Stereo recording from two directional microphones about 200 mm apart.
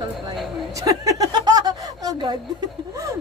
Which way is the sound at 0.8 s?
15° right (ahead or behind).